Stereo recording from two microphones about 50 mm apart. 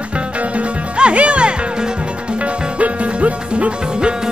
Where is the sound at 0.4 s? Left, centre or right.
Right.